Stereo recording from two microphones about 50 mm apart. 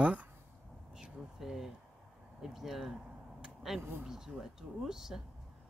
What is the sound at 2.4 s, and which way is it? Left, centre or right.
Speech, centre.